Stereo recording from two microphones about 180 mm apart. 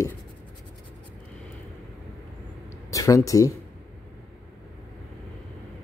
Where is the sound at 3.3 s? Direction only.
20° left (ahead or behind).